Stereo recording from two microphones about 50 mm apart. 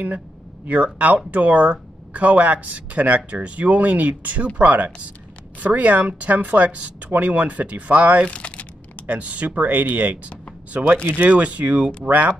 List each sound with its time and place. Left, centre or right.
0.9 s a woman's voice: right
8.3 s a sound: left
9.0 s a woman's voice: right
11.2 s a woman's voice: right